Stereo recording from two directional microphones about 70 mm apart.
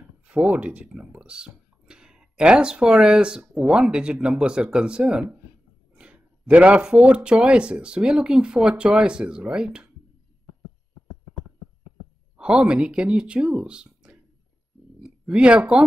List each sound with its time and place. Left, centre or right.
0.5 s speech: centre
3.9 s speech: centre
5.9 s a sound: centre
7.2 s speech: centre
12.4 s speech: centre
15.0 s speech: centre